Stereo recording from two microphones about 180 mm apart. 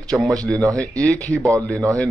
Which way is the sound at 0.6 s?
20° right (ahead or behind).